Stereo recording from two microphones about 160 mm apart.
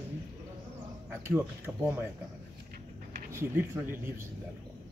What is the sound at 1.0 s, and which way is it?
Speech, 15° right (ahead or behind).